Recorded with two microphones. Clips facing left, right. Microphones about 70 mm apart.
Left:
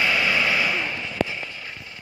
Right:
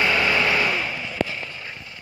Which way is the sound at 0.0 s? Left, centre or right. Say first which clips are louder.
Right 1 dB; right.